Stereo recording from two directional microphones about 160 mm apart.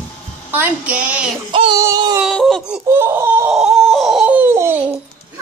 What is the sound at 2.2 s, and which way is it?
Speech, centre (ahead or behind).